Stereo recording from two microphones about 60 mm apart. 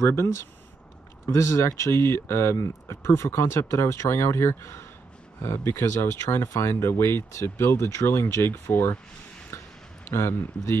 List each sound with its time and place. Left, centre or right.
0.1 s speech: left
9.5 s a sound: left
10.0 s speech: left